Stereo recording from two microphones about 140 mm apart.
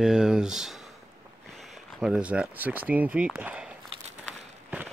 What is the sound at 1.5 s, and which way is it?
Speech, centre (ahead or behind).